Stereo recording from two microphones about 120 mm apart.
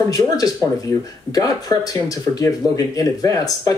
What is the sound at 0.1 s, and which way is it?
Speech, 30° left (ahead or behind).